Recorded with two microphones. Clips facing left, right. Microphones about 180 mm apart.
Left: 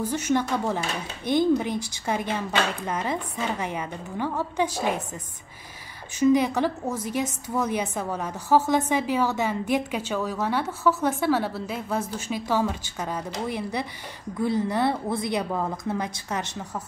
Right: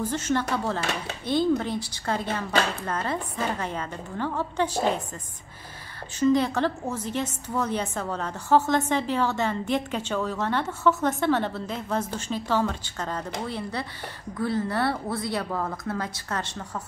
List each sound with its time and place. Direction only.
0.1 s a woman's voice: 15° left (ahead or behind)
6.1 s a woman's voice: 10° left (ahead or behind)